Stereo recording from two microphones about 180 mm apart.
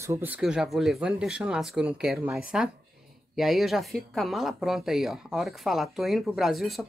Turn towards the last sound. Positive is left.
turn(degrees=0)  # may be behind; listen again after turning